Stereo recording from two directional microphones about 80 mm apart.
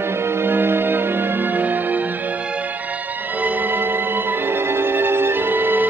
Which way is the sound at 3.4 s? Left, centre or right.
Right.